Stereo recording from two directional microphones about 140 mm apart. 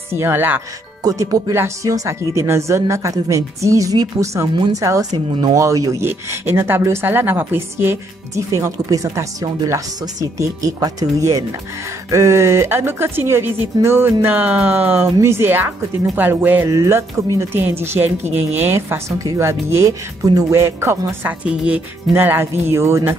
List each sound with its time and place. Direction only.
0.1 s speech: 15° right (ahead or behind)